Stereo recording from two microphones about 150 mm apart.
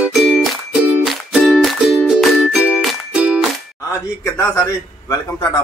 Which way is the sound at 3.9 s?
15° left (ahead or behind).